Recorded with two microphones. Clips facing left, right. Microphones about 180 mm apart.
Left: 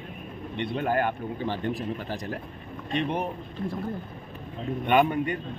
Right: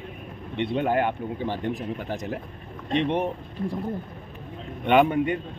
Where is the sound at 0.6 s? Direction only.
20° right (ahead or behind).